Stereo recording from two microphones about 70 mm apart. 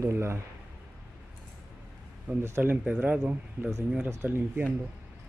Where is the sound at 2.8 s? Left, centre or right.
Right.